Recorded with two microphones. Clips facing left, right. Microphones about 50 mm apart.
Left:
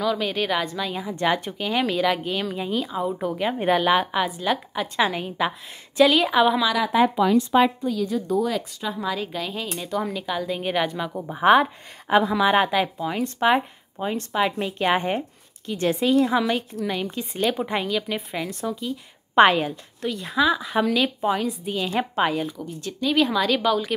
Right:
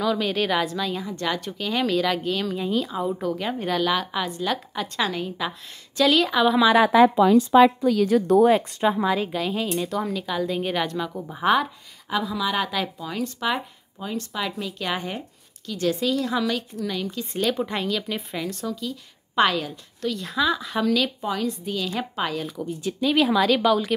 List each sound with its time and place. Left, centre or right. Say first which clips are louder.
0.0 s speech: right 1 dB; centre
1.1 s speech: left 4 dB; left
1.7 s a woman's voice: left 1 dB; centre
3.2 s a woman's voice: left 2 dB; centre
7.8 s speech: right 5 dB; right
8.5 s speech: right 8 dB; right
9.0 s a woman's voice: right 4 dB; centre; by 11.7 s left
12.1 s a woman's voice: left 7 dB; left
12.7 s speech: left 4 dB; left
17.3 s a woman's voice: left 1 dB; centre
18.5 s a woman's voice: left 2 dB; left
20.0 s a woman's voice: left 2 dB; centre
22.6 s speech: right 3 dB; centre